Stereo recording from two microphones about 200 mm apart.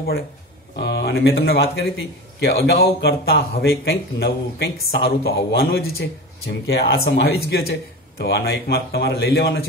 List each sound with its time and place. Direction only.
0.7 s a man's voice: 60° left (ahead or behind)